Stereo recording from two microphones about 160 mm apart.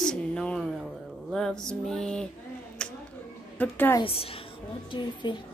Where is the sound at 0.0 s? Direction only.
5° left (ahead or behind).